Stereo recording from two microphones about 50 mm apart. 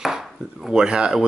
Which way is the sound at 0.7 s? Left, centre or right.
Centre.